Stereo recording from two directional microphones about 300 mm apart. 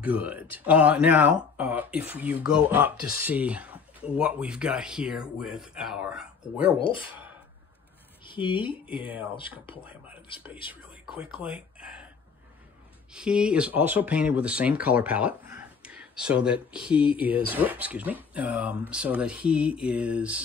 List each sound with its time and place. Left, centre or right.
0.0 s speech: centre
7.1 s a sound: centre
8.2 s speech: centre
9.8 s speech: centre
13.1 s speech: centre
16.9 s speech: centre
17.2 s speech: centre